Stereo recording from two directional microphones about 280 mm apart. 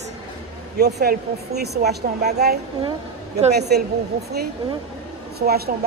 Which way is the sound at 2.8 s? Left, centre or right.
Right.